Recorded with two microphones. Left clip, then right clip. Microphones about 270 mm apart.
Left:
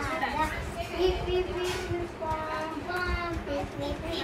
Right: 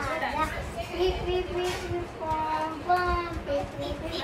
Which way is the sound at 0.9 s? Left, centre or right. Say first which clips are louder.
Even; centre.